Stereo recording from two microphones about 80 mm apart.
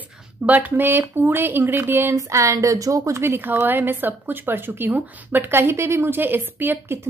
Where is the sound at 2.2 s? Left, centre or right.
Right.